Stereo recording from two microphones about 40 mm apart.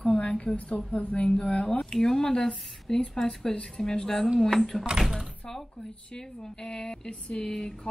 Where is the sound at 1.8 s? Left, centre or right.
Centre.